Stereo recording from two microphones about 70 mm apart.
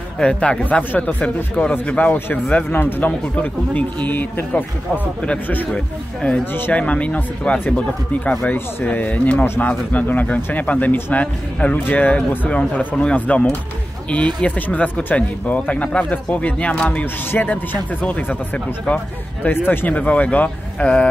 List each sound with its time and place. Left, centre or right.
0.2 s speech: centre
2.1 s speech: left
6.5 s speech: left
6.8 s speech: centre
17.0 s speech: left